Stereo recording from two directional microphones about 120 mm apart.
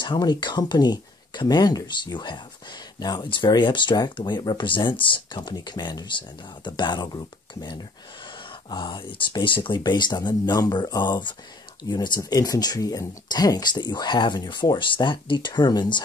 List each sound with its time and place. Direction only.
0.0 s speech: 40° left (ahead or behind)
8.5 s speech: 40° left (ahead or behind)